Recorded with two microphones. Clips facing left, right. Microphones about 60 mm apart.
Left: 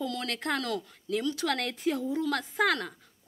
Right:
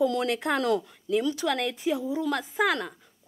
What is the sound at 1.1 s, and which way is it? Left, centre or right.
A woman's voice, centre.